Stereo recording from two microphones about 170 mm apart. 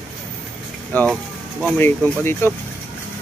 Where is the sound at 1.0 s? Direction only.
Centre (ahead or behind).